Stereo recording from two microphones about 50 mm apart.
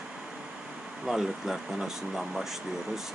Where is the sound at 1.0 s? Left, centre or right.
Centre.